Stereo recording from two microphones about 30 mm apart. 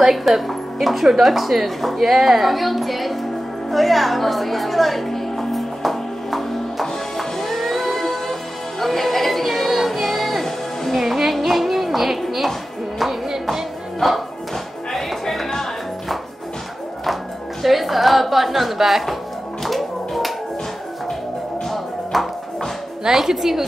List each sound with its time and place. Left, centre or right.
0.3 s speech: centre
3.7 s music: centre
11.0 s music: centre
14.0 s music: centre
17.0 s music: centre
21.6 s music: centre
23.1 s a woman's voice: centre